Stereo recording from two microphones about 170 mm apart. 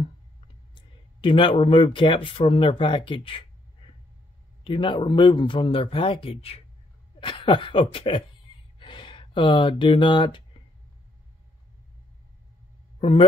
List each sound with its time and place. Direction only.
0.7 s speech: 30° left (ahead or behind)